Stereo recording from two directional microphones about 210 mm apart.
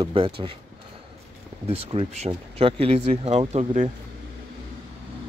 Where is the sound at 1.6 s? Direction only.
30° right (ahead or behind).